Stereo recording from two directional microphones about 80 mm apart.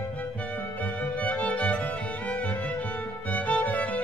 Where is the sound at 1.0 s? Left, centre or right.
Centre.